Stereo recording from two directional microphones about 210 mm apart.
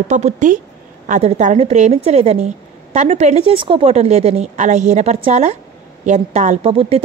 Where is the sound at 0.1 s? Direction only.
35° right (ahead or behind).